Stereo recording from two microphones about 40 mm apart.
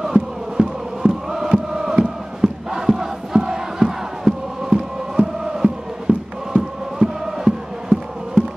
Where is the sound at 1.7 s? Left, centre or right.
Centre.